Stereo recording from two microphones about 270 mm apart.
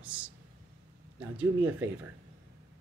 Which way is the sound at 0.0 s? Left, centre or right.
Centre.